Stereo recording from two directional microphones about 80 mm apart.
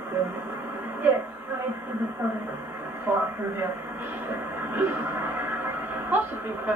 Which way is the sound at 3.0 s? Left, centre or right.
Right.